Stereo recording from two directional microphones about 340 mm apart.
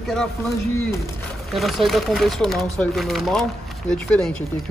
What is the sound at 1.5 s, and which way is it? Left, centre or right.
Speech, centre.